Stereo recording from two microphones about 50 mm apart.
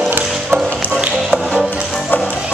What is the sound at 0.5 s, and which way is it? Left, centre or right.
Music, right.